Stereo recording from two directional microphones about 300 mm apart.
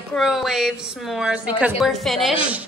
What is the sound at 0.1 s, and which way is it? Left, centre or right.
A woman's voice, centre.